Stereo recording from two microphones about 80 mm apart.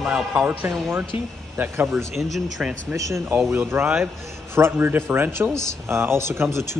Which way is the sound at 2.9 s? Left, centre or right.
Right.